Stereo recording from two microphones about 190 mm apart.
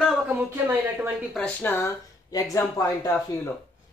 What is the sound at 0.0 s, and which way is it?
Speech, 10° right (ahead or behind).